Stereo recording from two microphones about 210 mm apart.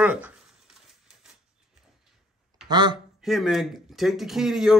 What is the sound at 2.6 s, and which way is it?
Speech, 20° right (ahead or behind).